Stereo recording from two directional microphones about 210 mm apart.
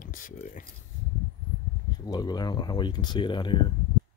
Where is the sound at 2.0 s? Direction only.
20° left (ahead or behind).